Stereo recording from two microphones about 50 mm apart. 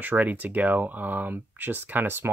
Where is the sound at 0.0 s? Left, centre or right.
Right.